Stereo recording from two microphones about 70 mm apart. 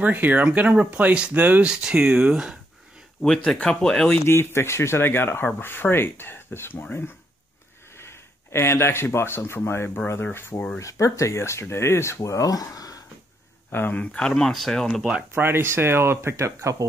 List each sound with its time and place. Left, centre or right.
0.0 s speech: right
1.7 s speech: centre
3.2 s speech: centre
4.3 s speech: left
10.8 s speech: left
13.7 s speech: left
14.1 s speech: centre
15.3 s speech: right